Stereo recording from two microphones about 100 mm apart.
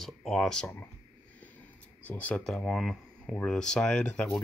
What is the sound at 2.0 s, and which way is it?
Speech, 15° left (ahead or behind).